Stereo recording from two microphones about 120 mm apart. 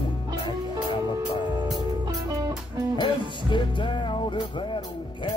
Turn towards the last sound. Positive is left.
turn(degrees=40)  # may be behind; listen again after turning